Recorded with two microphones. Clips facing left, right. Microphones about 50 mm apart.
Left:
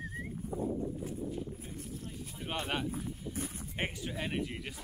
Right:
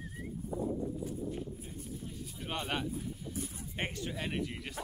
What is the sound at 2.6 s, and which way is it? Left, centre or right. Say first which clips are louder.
Speech: even; centre.